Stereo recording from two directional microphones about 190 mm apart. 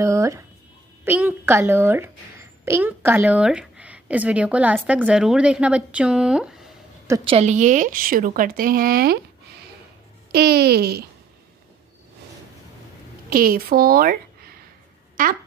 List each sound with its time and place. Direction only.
0.0 s a sound: 15° right (ahead or behind)
1.0 s speech: 10° right (ahead or behind)
7.2 s speech: 35° right (ahead or behind); by 9.2 s 50° right (ahead or behind)
10.3 s a child's voice: 55° right (ahead or behind)
13.3 s a woman's voice: 50° right (ahead or behind)